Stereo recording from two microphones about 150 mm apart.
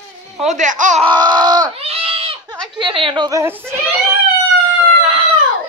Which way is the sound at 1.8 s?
40° right (ahead or behind).